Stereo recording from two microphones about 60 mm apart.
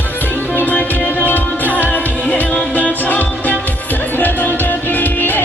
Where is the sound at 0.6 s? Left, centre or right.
Left.